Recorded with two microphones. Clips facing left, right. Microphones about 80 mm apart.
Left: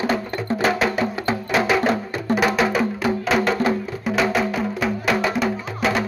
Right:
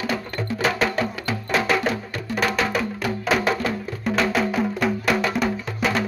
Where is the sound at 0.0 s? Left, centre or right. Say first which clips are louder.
Left 4 dB; left.